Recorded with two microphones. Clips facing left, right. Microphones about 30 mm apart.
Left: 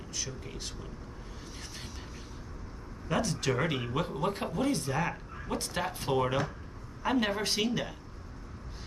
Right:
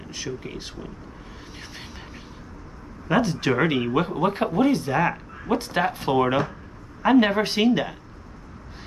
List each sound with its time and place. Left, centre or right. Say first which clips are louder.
0.1 s speech: right 8 dB; right
3.1 s speech: right 9 dB; right